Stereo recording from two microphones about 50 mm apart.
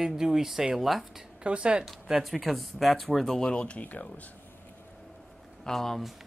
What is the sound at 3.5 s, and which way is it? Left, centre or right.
Speech, left.